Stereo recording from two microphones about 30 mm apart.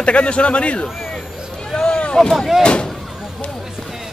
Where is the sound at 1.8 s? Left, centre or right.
Left.